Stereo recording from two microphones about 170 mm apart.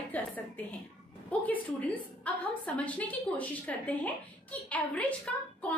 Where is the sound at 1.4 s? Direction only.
10° left (ahead or behind).